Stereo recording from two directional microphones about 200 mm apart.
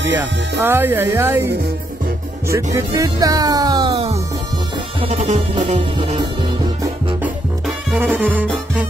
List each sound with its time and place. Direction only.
0.6 s speech: 10° right (ahead or behind)
2.5 s music: 15° right (ahead or behind)
7.6 s music: 5° right (ahead or behind)